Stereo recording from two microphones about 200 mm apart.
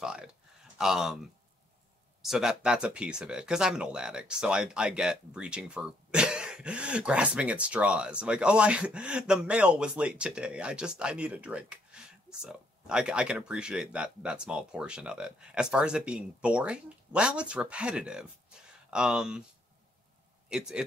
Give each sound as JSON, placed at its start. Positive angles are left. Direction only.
{"t": 0.0, "sound": "speech", "side_deg": -5}
{"t": 2.2, "sound": "speech", "side_deg": 0}
{"t": 20.4, "sound": "speech", "side_deg": -5}